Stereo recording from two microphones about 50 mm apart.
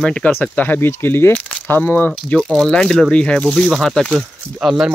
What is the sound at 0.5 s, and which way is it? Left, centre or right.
Speech, left.